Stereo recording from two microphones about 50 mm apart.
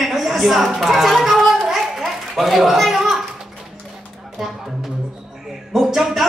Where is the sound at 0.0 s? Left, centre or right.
Centre.